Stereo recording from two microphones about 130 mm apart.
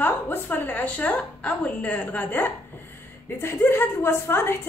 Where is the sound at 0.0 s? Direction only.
15° left (ahead or behind).